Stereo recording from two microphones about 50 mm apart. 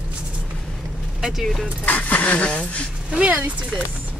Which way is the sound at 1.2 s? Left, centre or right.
Centre.